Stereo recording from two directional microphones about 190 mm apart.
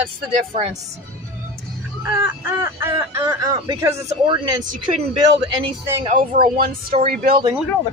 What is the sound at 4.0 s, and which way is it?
Speech, 30° right (ahead or behind).